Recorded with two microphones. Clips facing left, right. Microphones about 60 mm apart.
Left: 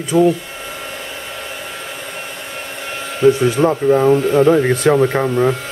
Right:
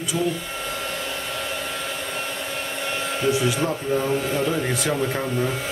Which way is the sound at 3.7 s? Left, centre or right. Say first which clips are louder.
Left 10 dB; centre.